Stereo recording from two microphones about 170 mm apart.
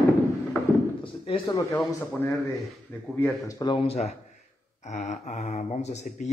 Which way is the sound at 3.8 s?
40° left (ahead or behind).